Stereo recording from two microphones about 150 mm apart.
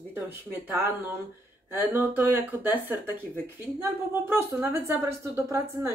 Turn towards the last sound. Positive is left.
turn(degrees=-15)  # may be behind; listen again after turning